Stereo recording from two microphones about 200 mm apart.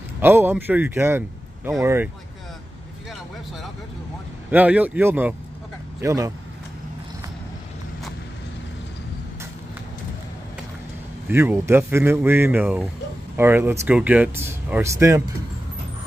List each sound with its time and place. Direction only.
0.2 s a man's voice: 10° right (ahead or behind)
4.5 s speech: 5° right (ahead or behind)
11.2 s speech: 10° right (ahead or behind)